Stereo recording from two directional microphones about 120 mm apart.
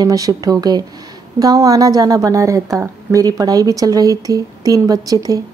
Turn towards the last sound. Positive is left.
turn(degrees=-30)  # may be behind; listen again after turning